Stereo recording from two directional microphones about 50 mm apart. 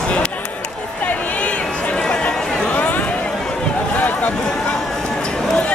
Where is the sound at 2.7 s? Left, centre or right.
Left.